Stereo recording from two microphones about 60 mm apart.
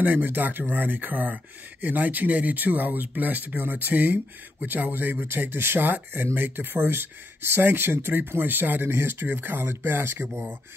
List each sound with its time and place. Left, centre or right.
0.0 s speech: right